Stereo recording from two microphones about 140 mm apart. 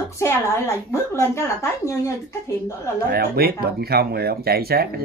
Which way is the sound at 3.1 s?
90° right.